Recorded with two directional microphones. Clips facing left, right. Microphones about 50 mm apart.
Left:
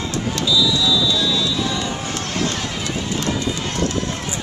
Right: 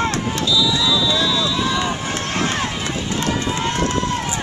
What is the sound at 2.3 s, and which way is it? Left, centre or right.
Run, right.